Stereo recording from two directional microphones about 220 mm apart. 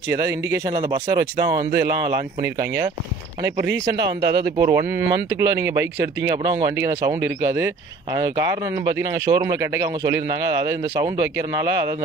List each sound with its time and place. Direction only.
0.1 s speech: 15° right (ahead or behind)
3.6 s speech: 50° right (ahead or behind)
4.4 s speech: 15° right (ahead or behind)